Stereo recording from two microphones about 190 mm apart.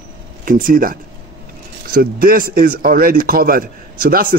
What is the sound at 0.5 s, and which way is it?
A man's voice, 45° right (ahead or behind).